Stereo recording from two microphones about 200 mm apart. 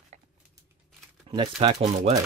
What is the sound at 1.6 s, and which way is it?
Speech, 30° right (ahead or behind).